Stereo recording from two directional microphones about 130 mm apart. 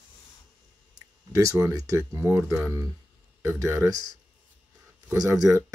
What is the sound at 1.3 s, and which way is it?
Speech, 25° right (ahead or behind).